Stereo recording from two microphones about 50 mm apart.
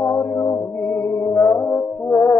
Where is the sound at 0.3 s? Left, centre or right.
Left.